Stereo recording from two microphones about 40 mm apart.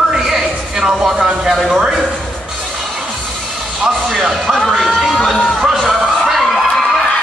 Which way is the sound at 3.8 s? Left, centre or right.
Centre.